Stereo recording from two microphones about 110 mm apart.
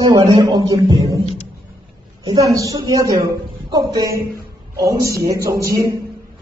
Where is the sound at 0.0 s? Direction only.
40° right (ahead or behind).